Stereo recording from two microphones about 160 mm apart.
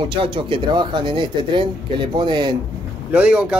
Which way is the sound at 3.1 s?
10° right (ahead or behind).